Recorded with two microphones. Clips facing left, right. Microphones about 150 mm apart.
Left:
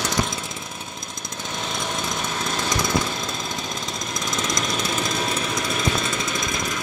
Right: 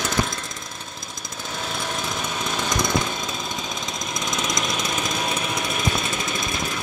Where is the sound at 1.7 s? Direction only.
10° right (ahead or behind).